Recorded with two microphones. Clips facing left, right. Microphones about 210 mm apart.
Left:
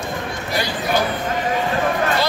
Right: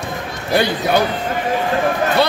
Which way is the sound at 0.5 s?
60° right (ahead or behind).